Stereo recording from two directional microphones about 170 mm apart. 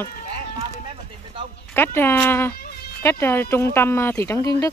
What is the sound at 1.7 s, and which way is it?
Speech, 15° left (ahead or behind).